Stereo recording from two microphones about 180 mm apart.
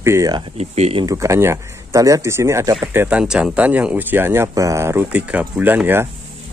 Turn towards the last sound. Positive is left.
turn(degrees=-10)  # may be behind; listen again after turning